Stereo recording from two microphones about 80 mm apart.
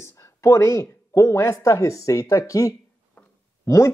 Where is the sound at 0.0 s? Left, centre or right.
Left.